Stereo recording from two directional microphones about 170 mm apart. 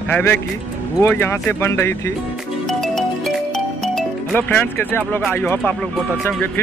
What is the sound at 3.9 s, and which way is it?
Speech, 10° left (ahead or behind).